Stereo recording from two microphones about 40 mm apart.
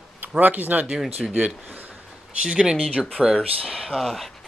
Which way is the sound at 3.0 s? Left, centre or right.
Centre.